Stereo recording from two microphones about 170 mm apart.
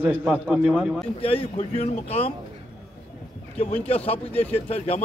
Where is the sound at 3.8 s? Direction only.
35° left (ahead or behind).